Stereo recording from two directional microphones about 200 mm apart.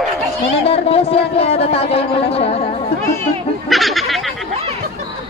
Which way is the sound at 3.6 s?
Centre (ahead or behind).